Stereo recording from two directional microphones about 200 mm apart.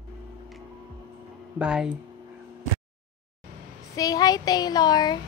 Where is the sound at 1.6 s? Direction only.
5° right (ahead or behind).